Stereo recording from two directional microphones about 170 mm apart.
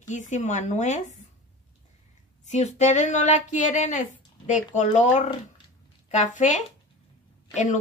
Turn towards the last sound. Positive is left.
turn(degrees=45)  # may be behind; listen again after turning